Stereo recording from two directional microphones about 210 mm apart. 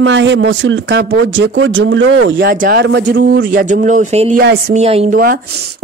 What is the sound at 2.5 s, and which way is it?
Speech, 45° right (ahead or behind).